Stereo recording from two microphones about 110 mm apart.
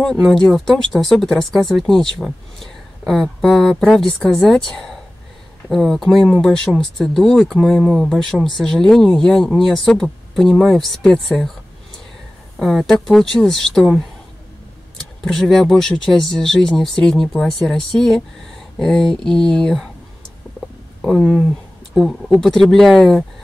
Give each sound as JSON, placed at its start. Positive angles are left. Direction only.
{"t": 0.0, "sound": "speech", "side_deg": 0}
{"t": 12.5, "sound": "speech", "side_deg": 0}
{"t": 15.2, "sound": "speech", "side_deg": 0}
{"t": 21.2, "sound": "speech", "side_deg": -10}
{"t": 21.9, "sound": "speech", "side_deg": 5}